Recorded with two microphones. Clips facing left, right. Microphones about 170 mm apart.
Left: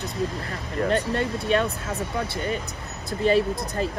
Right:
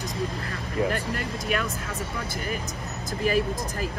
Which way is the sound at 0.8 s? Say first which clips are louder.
Left 5 dB; 25° left (ahead or behind).